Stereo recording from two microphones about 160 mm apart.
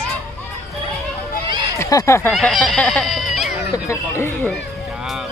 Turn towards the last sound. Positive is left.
turn(degrees=15)  # may be behind; listen again after turning